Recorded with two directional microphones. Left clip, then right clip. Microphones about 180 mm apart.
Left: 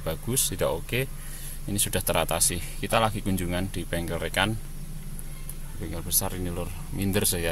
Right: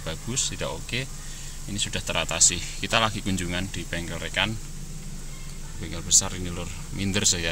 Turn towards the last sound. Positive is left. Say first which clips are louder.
# right 2 dB
turn(degrees=20)  # may be behind; listen again after turning